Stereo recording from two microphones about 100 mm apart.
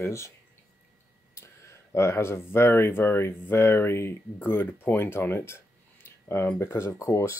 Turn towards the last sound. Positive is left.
turn(degrees=25)  # may be behind; listen again after turning